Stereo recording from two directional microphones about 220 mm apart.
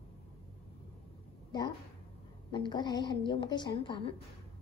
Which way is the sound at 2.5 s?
20° left (ahead or behind).